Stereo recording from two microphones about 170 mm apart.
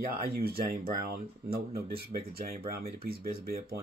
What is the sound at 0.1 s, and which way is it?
Speech, 60° right (ahead or behind).